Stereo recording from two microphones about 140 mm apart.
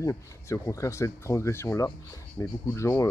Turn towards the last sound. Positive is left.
turn(degrees=20)  # may be behind; listen again after turning